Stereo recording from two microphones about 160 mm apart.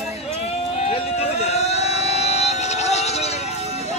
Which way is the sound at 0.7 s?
40° left (ahead or behind).